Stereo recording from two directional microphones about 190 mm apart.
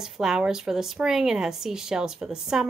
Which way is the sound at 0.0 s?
5° right (ahead or behind).